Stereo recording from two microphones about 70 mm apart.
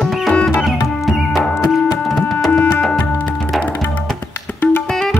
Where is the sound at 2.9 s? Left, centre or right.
Left.